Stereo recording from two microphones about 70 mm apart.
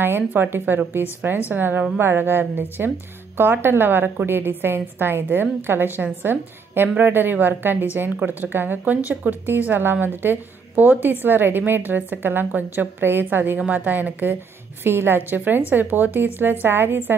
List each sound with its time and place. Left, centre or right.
0.0 s a woman's voice: right